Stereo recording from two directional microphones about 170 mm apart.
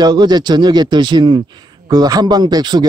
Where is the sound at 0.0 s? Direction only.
25° right (ahead or behind).